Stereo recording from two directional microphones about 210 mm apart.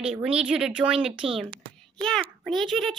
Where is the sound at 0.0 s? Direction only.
5° right (ahead or behind).